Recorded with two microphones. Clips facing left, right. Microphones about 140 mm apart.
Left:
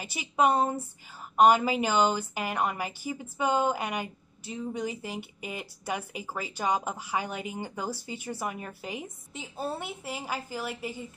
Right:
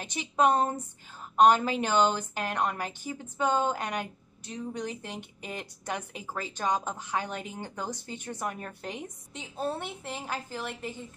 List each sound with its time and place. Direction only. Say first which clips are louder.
0.0 s a woman's voice: even; 5° left (ahead or behind)